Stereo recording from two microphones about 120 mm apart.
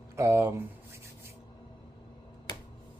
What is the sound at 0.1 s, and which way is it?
Speech, 25° right (ahead or behind).